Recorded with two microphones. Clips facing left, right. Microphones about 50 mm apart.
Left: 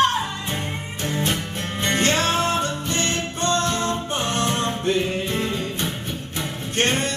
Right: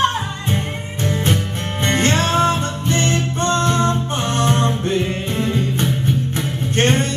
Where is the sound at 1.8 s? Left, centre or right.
Right.